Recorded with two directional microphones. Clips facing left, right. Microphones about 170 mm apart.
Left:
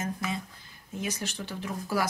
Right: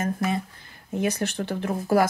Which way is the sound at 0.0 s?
60° right (ahead or behind).